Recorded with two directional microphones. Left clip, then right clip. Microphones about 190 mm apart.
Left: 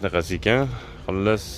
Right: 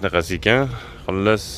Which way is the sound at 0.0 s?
Centre (ahead or behind).